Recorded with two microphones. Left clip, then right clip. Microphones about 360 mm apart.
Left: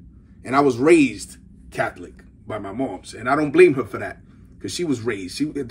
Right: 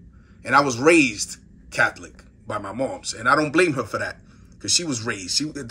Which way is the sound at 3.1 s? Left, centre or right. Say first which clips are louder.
Left 3 dB; right.